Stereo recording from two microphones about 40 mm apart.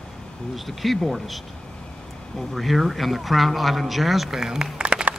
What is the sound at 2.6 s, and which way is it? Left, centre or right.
Speech, centre.